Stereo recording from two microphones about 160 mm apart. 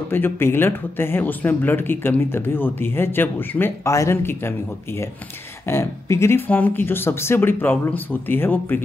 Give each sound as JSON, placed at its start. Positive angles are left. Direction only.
{"t": 0.1, "sound": "speech", "side_deg": 15}